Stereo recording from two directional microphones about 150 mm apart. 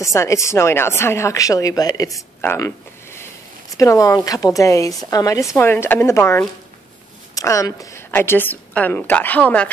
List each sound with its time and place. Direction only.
0.0 s speech: 20° left (ahead or behind)
2.4 s a sound: 15° left (ahead or behind)
3.7 s a woman's voice: 20° left (ahead or behind)